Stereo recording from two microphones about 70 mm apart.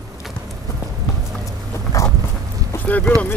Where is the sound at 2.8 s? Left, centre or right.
Left.